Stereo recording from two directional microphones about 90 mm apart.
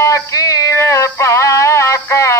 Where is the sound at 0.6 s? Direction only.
35° left (ahead or behind).